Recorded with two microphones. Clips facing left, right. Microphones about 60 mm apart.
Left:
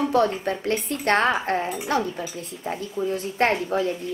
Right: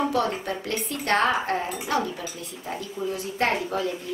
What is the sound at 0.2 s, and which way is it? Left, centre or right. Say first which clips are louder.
A woman's voice: left 4 dB; left.